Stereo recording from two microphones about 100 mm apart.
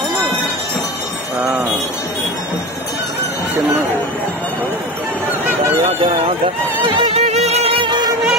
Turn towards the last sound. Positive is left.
turn(degrees=-85)